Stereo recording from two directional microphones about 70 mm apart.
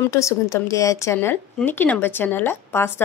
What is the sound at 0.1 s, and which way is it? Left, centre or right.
A woman's voice, left.